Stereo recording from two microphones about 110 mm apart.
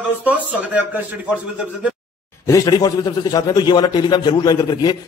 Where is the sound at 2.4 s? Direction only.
30° left (ahead or behind).